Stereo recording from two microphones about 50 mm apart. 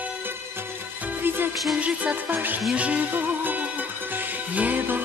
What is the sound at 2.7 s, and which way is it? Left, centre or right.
Music, right.